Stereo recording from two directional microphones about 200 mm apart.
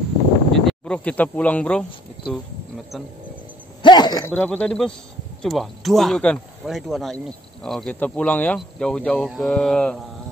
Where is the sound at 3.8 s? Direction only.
20° left (ahead or behind).